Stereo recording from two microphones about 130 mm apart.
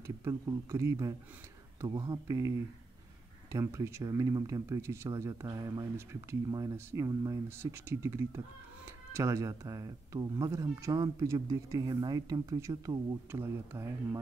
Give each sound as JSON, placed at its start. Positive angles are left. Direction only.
{"t": 0.0, "sound": "speech", "side_deg": -25}
{"t": 3.5, "sound": "speech", "side_deg": -20}